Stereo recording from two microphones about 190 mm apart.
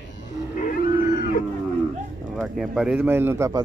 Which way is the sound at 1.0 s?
45° left (ahead or behind).